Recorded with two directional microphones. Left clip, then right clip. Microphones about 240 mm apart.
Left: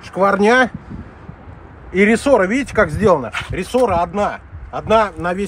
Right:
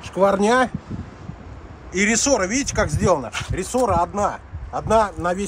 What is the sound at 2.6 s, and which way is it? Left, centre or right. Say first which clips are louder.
Speech: left 6 dB; left.